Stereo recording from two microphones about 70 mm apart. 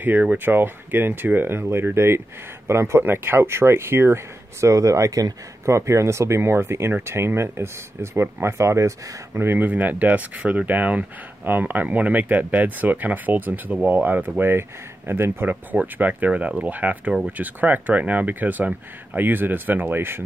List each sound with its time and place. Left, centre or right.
0.0 s speech: right
9.7 s speech: right